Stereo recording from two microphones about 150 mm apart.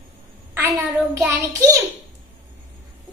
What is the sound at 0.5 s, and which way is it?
Speech, 20° right (ahead or behind).